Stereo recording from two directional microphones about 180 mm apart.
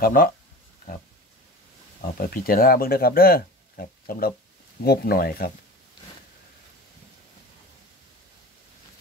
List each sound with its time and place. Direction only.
0.0 s speech: 55° left (ahead or behind)
2.0 s speech: 50° left (ahead or behind)